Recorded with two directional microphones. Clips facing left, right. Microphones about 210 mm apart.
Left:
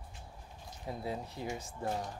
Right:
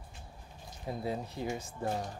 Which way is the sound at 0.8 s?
25° right (ahead or behind).